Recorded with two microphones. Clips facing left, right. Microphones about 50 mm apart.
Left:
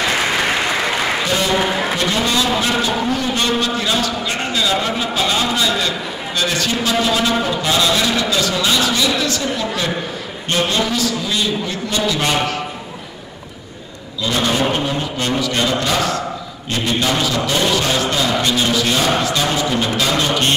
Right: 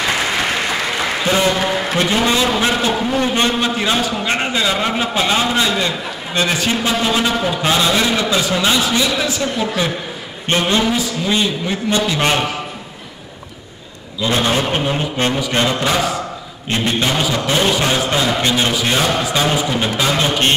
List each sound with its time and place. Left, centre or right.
2.0 s a man's voice: right
14.2 s a man's voice: right
17.1 s a man's voice: centre